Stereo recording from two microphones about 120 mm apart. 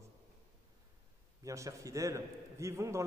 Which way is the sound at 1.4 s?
25° right (ahead or behind).